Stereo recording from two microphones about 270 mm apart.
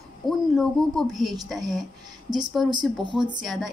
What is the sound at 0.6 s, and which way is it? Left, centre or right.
A woman's voice, centre.